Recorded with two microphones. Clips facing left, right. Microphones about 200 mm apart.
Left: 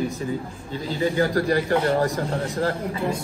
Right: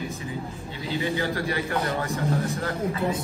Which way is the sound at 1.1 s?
40° left (ahead or behind).